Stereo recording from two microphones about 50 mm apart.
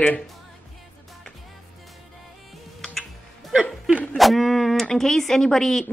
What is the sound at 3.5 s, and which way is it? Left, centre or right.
Chuckle, centre.